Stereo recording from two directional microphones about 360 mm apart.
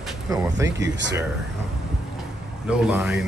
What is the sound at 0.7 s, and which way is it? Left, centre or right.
Speech, right.